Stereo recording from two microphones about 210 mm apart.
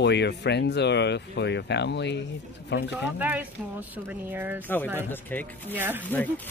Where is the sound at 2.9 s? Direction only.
5° right (ahead or behind).